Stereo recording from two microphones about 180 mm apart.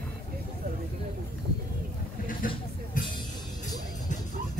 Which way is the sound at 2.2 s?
50° left (ahead or behind).